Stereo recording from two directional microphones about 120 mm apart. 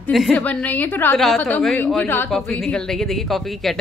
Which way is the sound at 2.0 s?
20° left (ahead or behind).